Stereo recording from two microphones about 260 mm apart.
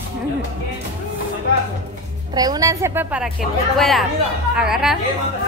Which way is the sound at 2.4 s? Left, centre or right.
Centre.